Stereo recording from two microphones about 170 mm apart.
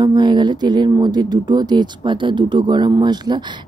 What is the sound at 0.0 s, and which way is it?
Speech, 25° right (ahead or behind).